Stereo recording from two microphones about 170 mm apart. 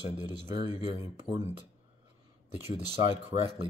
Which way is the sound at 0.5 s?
25° right (ahead or behind).